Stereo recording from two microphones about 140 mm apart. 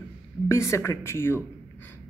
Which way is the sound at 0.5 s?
20° left (ahead or behind).